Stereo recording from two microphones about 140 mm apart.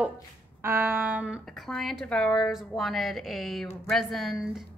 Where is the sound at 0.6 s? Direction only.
15° right (ahead or behind).